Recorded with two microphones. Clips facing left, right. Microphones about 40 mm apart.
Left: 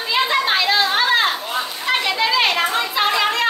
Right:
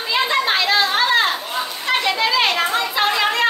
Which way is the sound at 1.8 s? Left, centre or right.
Centre.